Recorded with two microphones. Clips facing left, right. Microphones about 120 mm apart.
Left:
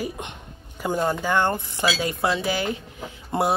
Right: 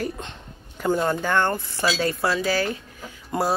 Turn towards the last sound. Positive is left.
turn(degrees=25)  # may be behind; listen again after turning